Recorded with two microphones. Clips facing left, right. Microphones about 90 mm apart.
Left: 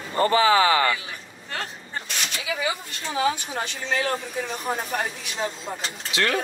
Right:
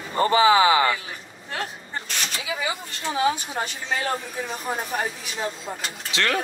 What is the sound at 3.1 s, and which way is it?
Speech, 20° right (ahead or behind).